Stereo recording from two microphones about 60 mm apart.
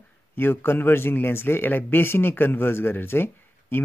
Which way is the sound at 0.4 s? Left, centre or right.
Left.